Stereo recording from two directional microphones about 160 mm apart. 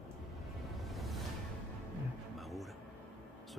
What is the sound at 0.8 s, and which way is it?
Music, centre (ahead or behind).